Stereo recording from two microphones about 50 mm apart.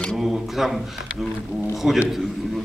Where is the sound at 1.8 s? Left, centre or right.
Centre.